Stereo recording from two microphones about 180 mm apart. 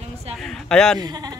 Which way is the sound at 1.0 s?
20° right (ahead or behind).